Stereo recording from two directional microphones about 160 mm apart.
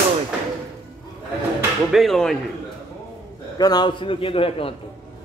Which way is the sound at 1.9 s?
Centre (ahead or behind).